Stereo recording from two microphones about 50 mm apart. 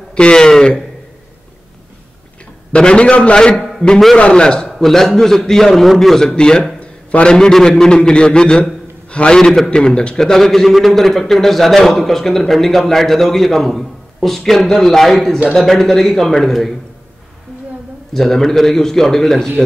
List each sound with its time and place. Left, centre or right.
0.1 s a man's voice: centre
2.7 s a man's voice: left
3.5 s a sound: centre
4.3 s a man's voice: centre
6.8 s a sound: left
7.3 s a man's voice: centre
18.1 s a man's voice: centre